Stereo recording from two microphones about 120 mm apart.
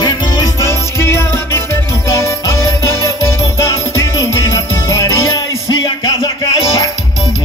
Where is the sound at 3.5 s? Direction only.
25° left (ahead or behind).